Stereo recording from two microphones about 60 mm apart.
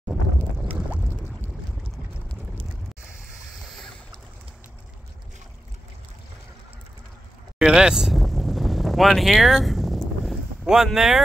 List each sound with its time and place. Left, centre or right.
0.7 s boat: centre
7.5 s vehicle: centre